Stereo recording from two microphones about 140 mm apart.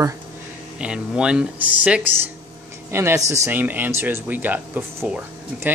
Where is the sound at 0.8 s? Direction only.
5° right (ahead or behind).